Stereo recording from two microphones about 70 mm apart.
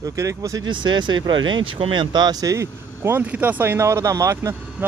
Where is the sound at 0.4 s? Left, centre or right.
Right.